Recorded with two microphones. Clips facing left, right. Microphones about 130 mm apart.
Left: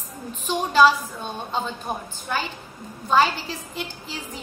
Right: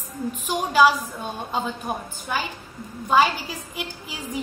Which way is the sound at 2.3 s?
10° right (ahead or behind).